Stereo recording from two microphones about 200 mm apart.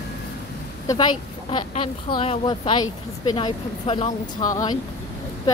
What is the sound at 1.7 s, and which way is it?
Speech, 25° left (ahead or behind).